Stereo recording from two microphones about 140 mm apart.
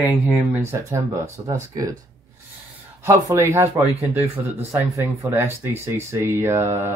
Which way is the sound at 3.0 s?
15° right (ahead or behind).